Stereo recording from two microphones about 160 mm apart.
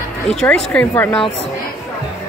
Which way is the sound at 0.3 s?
5° left (ahead or behind).